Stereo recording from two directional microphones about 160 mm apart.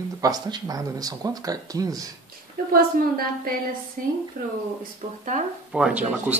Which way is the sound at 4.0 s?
55° right (ahead or behind).